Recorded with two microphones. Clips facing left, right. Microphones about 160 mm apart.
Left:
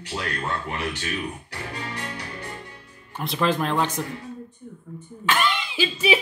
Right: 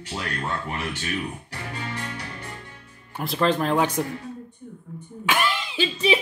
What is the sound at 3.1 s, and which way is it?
Speech, centre (ahead or behind).